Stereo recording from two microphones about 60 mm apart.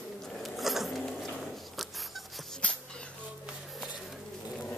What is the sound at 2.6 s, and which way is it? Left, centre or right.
Music, centre.